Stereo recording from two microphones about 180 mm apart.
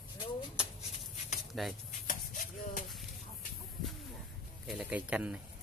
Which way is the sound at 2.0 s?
50° left (ahead or behind).